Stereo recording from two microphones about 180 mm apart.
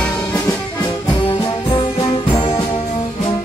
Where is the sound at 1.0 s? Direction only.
25° left (ahead or behind).